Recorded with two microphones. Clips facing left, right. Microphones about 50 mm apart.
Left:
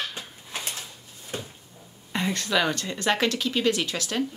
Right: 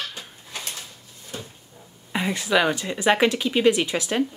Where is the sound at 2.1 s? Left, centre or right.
Centre.